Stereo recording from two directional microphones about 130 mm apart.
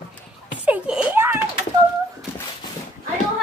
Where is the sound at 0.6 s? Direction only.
10° right (ahead or behind).